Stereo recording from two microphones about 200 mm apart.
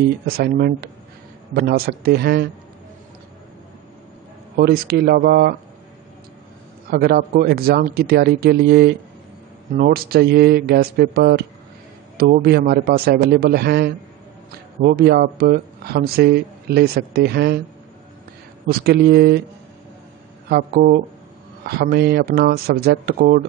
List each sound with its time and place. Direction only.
0.3 s speech: 50° right (ahead or behind)
4.6 s speech: 55° right (ahead or behind)
6.9 s speech: 50° right (ahead or behind)
18.7 s speech: 50° right (ahead or behind)
20.4 s speech: 50° right (ahead or behind)